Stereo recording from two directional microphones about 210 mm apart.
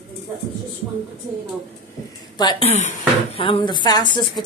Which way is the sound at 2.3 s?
25° left (ahead or behind).